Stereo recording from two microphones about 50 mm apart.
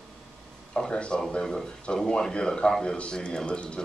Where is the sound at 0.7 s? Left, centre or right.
Centre.